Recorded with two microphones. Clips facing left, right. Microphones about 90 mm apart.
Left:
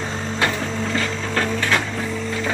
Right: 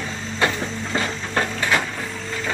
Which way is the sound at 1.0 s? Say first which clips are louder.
Right 2 dB; 20° right (ahead or behind).